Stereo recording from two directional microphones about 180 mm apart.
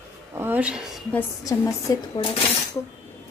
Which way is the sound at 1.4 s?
20° left (ahead or behind).